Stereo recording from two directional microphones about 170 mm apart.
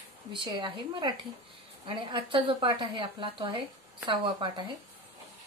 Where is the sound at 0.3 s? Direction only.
25° right (ahead or behind).